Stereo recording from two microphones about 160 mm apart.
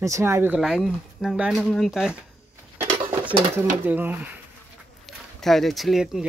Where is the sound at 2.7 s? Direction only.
15° right (ahead or behind).